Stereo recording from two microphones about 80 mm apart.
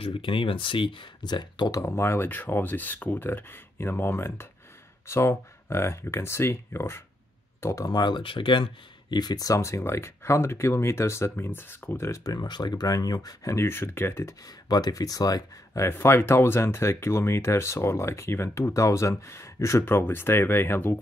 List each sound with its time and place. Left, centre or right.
0.2 s speech: left
1.8 s speech: left
7.9 s speech: left
9.1 s speech: left
12.1 s speech: left
13.5 s speech: left
14.4 s speech: left
15.8 s speech: left